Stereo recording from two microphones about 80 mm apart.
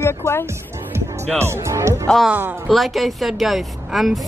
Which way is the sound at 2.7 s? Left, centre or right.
Centre.